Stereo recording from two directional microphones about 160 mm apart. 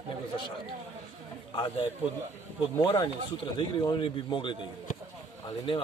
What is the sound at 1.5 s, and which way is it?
Speech, 35° left (ahead or behind).